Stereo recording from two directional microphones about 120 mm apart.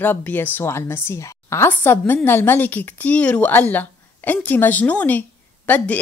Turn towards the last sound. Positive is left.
turn(degrees=10)  # may be behind; listen again after turning